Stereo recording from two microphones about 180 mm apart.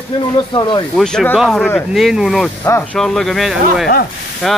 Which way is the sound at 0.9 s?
5° left (ahead or behind).